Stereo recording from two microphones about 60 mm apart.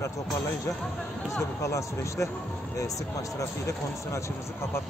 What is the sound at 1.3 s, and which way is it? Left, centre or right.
Speech, left.